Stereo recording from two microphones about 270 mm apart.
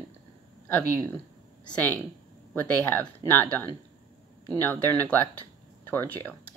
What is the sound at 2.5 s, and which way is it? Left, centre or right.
Speech, centre.